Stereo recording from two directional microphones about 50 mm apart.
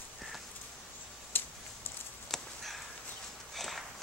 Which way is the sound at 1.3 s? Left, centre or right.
Left.